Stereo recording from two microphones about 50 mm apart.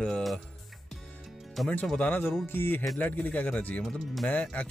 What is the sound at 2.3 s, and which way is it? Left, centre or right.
Music, left.